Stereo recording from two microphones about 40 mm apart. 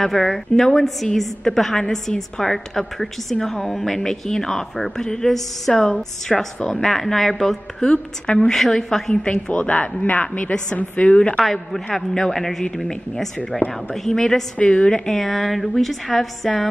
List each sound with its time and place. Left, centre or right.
0.0 s a woman's voice: centre
7.8 s a woman's voice: left
8.5 s a woman's voice: centre
9.1 s a woman's voice: left
11.3 s a woman's voice: centre
14.6 s a woman's voice: left
14.9 s a woman's voice: centre
15.2 s a woman's voice: centre